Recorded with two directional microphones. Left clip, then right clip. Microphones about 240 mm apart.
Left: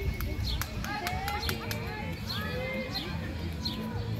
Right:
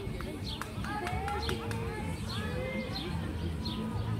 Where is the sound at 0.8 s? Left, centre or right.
Left.